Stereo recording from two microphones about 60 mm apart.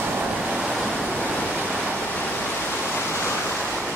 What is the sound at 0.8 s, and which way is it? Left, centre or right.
Waves, centre.